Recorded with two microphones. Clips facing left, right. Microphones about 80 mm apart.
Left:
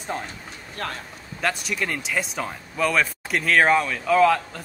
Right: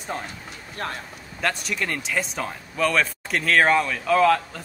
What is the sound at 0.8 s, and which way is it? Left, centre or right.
Speech, right.